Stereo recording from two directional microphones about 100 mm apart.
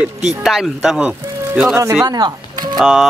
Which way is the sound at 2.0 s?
45° right (ahead or behind).